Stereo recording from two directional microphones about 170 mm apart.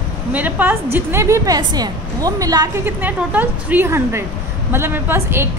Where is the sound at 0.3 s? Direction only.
10° right (ahead or behind).